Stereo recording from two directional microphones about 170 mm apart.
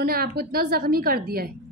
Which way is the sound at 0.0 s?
65° right (ahead or behind).